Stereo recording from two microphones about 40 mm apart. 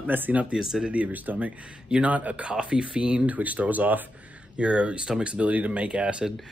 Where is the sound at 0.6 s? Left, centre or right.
Centre.